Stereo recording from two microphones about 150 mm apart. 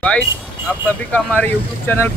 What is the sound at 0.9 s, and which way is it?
Speech, 10° left (ahead or behind).